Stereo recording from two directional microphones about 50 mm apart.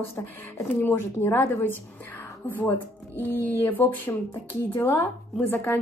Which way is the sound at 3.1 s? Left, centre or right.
Left.